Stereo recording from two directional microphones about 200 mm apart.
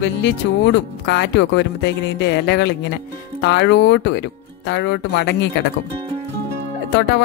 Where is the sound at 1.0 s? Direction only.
60° left (ahead or behind).